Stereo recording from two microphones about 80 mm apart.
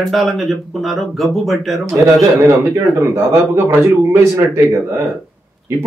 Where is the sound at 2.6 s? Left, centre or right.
Right.